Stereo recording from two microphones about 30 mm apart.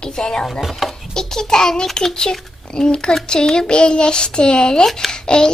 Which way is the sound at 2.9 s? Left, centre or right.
Left.